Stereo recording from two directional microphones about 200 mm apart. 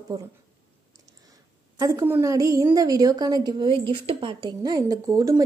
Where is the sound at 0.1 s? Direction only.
20° right (ahead or behind).